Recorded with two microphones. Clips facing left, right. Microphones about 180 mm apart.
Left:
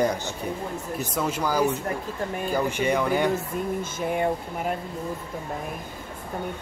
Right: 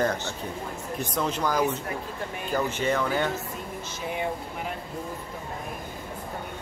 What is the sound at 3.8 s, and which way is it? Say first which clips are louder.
Speech: left 6 dB; 50° left (ahead or behind).